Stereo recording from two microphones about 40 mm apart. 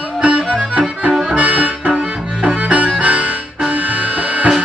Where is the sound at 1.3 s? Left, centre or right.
Right.